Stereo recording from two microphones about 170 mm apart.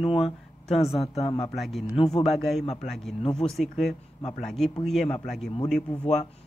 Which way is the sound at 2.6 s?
40° left (ahead or behind).